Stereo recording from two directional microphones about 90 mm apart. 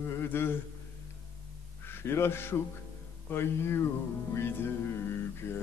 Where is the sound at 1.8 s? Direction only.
25° left (ahead or behind).